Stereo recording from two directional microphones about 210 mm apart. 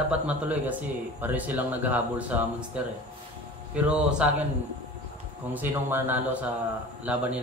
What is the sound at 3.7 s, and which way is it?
Speech, 5° right (ahead or behind).